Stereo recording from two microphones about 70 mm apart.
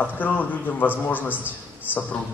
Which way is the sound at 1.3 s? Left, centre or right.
Right.